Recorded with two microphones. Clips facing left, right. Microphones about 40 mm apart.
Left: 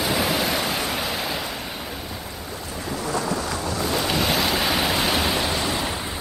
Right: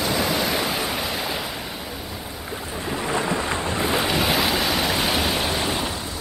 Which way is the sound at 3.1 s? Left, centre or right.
Right.